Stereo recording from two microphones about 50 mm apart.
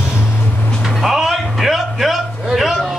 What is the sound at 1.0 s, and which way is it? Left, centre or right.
Music, centre.